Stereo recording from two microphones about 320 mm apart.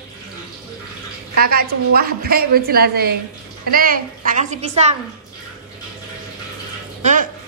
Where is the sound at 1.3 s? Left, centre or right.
Right.